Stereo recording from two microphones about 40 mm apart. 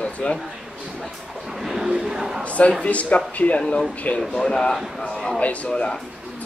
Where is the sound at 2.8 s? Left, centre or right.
Left.